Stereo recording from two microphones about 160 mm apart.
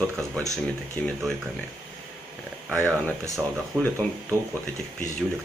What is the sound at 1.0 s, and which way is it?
Speech, 10° left (ahead or behind).